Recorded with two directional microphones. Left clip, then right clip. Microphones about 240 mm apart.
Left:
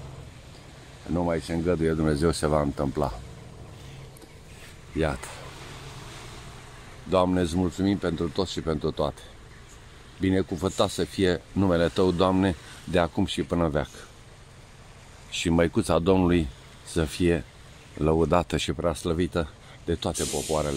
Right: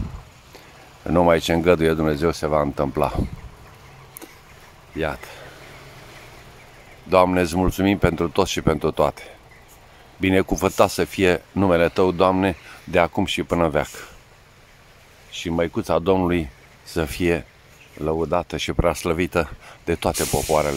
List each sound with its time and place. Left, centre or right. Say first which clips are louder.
1.1 s speech: right 11 dB; right
4.9 s speech: right 2 dB; centre
7.1 s speech: right 7 dB; centre
10.2 s speech: right 7 dB; right
15.3 s speech: even; centre
17.9 s speech: right 1 dB; centre
18.7 s speech: right 6 dB; centre
20.5 s speech: right 8 dB; right